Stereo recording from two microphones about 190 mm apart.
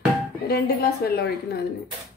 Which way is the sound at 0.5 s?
55° left (ahead or behind).